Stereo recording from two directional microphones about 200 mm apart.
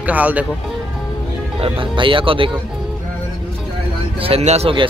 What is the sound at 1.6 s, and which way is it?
Speech, 25° right (ahead or behind).